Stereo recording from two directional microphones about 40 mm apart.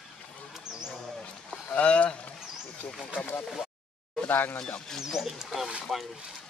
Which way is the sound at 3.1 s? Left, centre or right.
Left.